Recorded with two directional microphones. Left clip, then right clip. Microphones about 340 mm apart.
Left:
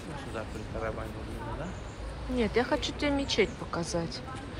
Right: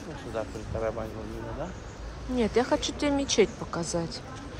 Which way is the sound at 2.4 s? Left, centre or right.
Centre.